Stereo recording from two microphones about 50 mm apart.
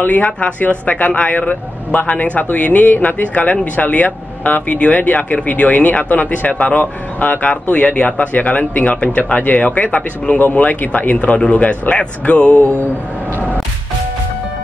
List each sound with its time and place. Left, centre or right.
0.0 s speech: left
11.6 s speech: left